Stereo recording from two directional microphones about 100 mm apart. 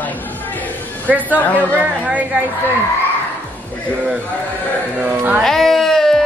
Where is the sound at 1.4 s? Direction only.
15° left (ahead or behind).